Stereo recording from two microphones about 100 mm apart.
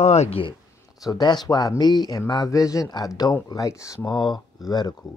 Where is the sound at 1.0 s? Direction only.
40° left (ahead or behind).